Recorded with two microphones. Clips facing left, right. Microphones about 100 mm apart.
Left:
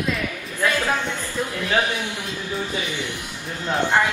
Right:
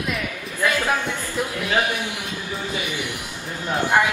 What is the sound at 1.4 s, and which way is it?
Speech, 15° right (ahead or behind).